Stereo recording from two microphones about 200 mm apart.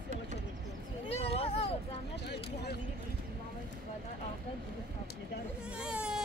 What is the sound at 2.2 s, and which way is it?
Speech, 55° left (ahead or behind).